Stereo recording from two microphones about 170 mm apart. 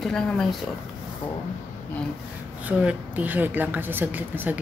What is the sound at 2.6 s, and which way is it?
A woman's voice, 5° right (ahead or behind).